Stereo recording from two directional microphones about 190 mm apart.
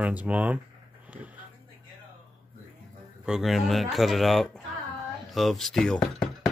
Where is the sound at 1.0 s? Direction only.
5° right (ahead or behind).